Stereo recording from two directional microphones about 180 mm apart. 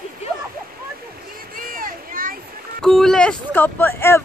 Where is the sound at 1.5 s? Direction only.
50° right (ahead or behind).